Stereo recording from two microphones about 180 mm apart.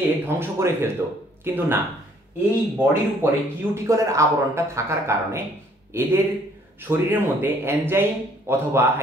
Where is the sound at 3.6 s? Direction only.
15° right (ahead or behind).